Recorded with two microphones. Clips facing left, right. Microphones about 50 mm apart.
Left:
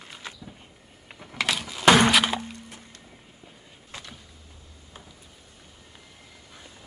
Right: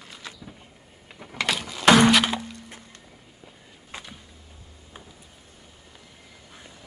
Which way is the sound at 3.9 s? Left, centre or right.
Right.